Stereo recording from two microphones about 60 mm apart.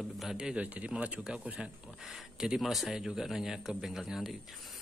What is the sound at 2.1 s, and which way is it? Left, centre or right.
A man's voice, centre.